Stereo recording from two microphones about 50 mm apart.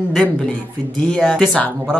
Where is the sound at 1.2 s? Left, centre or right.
Centre.